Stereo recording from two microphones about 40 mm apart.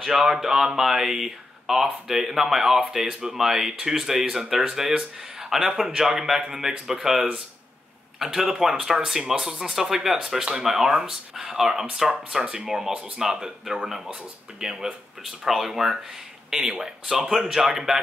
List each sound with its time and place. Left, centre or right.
0.0 s speech: centre